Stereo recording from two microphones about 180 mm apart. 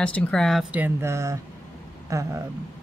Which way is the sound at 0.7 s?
10° right (ahead or behind).